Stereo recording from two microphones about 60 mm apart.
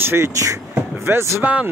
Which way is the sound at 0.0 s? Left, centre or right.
Right.